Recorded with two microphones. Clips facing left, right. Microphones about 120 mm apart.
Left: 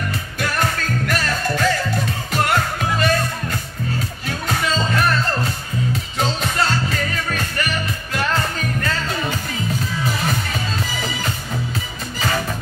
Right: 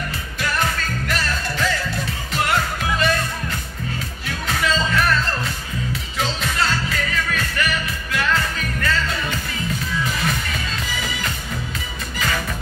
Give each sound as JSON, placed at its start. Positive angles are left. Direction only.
{"t": 0.4, "sound": "music", "side_deg": 50}
{"t": 4.3, "sound": "music", "side_deg": 40}